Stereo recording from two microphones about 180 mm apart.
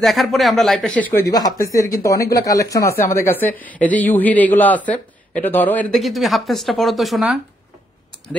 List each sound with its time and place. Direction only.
0.0 s a man's voice: centre (ahead or behind)